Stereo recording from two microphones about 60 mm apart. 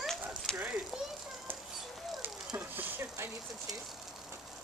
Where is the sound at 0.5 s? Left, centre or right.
Centre.